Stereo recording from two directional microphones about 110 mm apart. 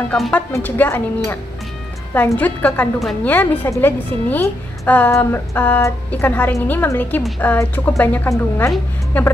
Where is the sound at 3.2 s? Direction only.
15° left (ahead or behind).